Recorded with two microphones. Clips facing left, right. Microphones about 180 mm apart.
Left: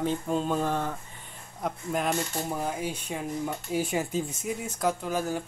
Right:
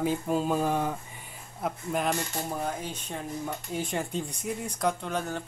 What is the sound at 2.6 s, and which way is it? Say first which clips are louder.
Speech: left 2 dB; 10° left (ahead or behind).